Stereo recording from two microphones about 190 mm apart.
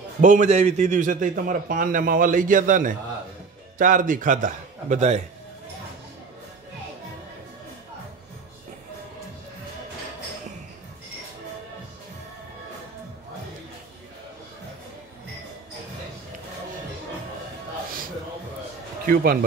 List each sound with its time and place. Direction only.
0.2 s a man's voice: 40° right (ahead or behind)
19.0 s a man's voice: 50° right (ahead or behind)